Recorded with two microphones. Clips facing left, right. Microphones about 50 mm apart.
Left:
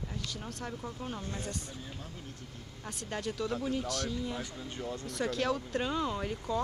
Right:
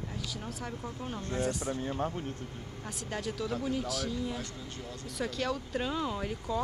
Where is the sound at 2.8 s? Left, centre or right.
Centre.